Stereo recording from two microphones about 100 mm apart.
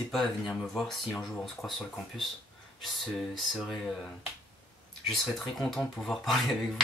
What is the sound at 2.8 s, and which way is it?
Speech, centre (ahead or behind).